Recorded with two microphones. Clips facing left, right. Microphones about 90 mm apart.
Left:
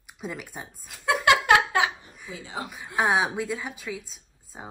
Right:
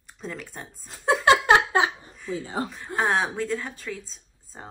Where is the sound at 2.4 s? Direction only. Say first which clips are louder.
Right 2 dB; 45° right (ahead or behind).